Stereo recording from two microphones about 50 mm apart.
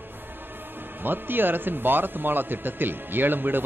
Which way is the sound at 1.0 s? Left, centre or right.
Right.